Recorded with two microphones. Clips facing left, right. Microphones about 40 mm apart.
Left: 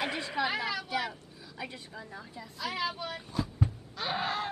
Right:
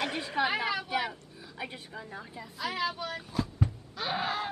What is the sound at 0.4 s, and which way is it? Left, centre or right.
A woman's voice, centre.